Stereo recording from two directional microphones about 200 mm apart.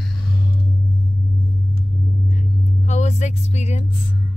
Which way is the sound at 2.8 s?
35° left (ahead or behind).